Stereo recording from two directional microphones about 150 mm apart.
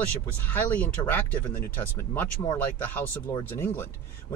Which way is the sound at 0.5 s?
10° left (ahead or behind).